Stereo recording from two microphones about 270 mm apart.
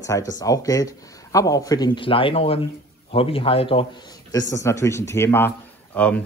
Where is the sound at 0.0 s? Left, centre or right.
Centre.